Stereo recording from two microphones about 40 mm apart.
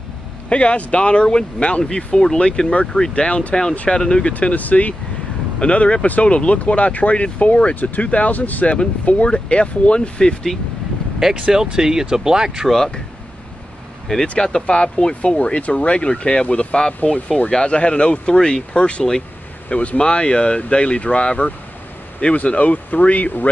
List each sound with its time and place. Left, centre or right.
0.5 s speech: left
4.3 s speech: left
7.7 s speech: left
11.3 s speech: centre
12.7 s speech: centre
14.1 s speech: centre
17.1 s speech: left
20.0 s speech: left